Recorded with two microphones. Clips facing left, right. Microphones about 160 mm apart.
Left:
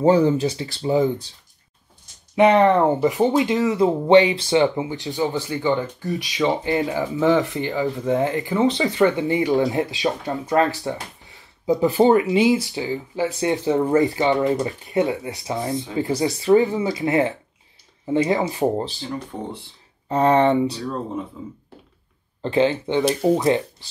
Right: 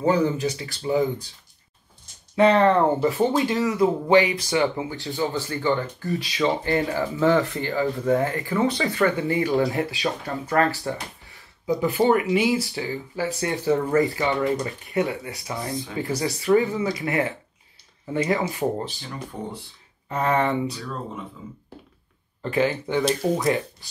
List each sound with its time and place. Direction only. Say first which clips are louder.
0.0 s speech: left 5 dB; 30° left (ahead or behind)
2.3 s speech: left 2 dB; 20° left (ahead or behind)
11.8 s speech: left 4 dB; 30° left (ahead or behind)
22.4 s speech: left 4 dB; 25° left (ahead or behind)